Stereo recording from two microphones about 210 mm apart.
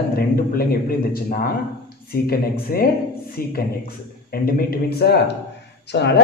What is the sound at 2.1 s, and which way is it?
Speech, 45° left (ahead or behind).